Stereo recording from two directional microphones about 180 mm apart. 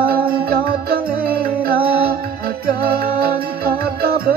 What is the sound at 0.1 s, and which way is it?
Music, 55° right (ahead or behind).